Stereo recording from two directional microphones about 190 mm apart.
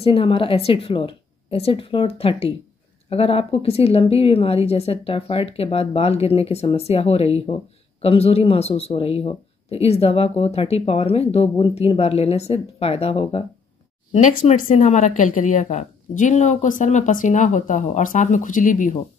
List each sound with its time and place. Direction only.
0.0 s a woman's voice: 30° left (ahead or behind)